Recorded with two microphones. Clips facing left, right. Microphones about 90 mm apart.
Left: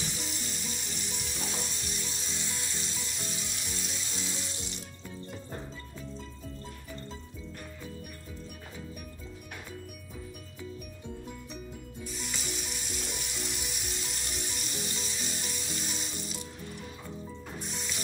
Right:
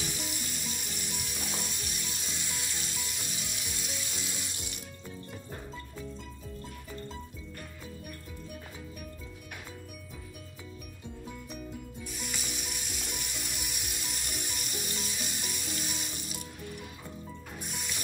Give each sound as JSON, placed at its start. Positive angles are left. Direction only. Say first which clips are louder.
{"t": 0.0, "sound": "music", "louder": "even", "side_deg": -10}
{"t": 12.1, "sound": "sizzle", "louder": "left 2 dB", "side_deg": -10}
{"t": 17.6, "sound": "music", "louder": "left 1 dB", "side_deg": -10}